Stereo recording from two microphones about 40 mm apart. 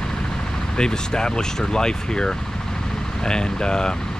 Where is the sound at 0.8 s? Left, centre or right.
Centre.